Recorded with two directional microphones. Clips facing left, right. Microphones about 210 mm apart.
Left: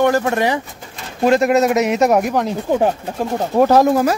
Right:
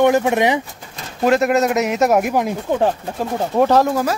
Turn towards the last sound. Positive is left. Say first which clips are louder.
# left 2 dB
turn(degrees=10)  # may be behind; listen again after turning